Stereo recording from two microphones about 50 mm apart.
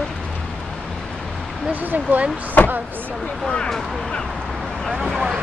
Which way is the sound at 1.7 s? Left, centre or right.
Right.